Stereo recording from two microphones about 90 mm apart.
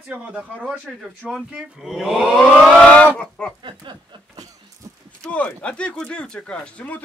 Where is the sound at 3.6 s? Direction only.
60° right (ahead or behind).